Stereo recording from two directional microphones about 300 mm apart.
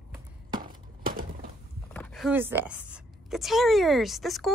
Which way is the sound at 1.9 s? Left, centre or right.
Centre.